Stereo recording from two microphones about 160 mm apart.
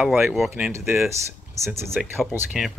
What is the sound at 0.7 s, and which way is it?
Speech, 15° right (ahead or behind).